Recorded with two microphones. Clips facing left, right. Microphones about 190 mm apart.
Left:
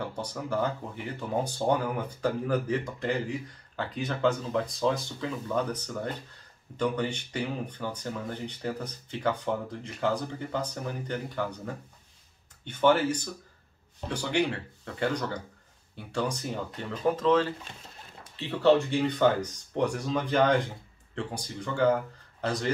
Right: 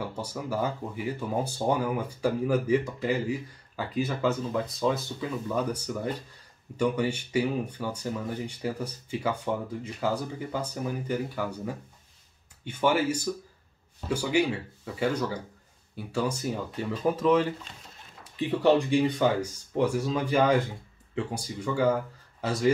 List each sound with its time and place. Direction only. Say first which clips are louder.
0.0 s speech: right 1 dB; 5° right (ahead or behind)